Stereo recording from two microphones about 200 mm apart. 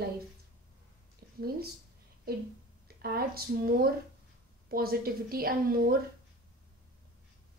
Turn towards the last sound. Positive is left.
turn(degrees=-45)  # may be behind; listen again after turning